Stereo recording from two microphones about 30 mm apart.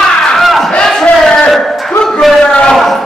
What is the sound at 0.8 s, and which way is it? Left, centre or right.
Crowd, centre.